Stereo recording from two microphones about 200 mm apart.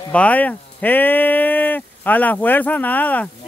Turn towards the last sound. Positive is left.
turn(degrees=10)  # may be behind; listen again after turning